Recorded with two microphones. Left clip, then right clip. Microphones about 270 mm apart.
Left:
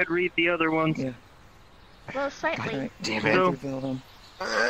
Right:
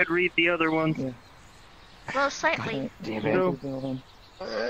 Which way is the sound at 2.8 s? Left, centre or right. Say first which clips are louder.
Left 3 dB; left.